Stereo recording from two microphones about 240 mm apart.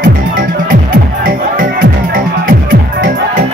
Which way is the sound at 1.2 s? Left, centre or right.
Right.